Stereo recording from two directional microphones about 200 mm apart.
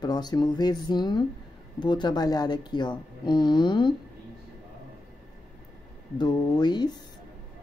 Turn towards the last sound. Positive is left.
turn(degrees=20)  # may be behind; listen again after turning